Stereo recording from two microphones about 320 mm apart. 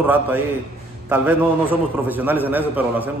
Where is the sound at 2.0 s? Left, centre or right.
Centre.